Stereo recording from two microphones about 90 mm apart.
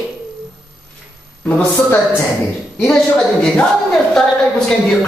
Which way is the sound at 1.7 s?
25° left (ahead or behind).